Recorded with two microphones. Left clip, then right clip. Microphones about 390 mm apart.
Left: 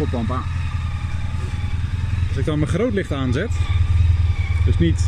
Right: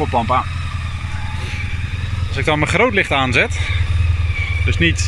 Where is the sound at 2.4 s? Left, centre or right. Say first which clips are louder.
Right 8 dB; right.